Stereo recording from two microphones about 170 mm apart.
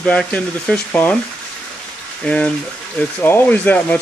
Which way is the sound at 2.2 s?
5° left (ahead or behind).